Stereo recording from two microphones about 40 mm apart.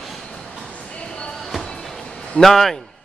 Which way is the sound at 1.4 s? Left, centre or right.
Centre.